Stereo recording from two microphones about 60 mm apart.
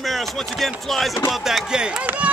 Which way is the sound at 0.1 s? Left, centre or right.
Centre.